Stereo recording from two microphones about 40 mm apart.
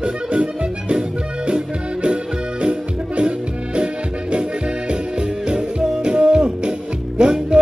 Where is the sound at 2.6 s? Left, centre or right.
Right.